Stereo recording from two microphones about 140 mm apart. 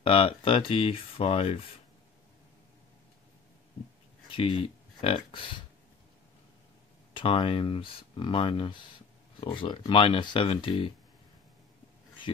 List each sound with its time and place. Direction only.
0.0 s speech: 40° left (ahead or behind)
4.3 s speech: 40° left (ahead or behind)
7.2 s speech: 40° left (ahead or behind)